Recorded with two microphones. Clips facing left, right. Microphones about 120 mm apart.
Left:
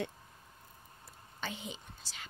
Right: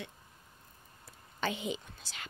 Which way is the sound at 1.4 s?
90° right.